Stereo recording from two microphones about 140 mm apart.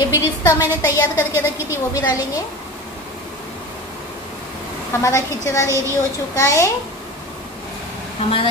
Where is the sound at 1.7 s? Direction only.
25° left (ahead or behind).